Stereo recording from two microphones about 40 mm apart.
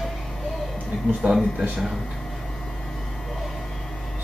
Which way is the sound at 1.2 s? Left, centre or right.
Right.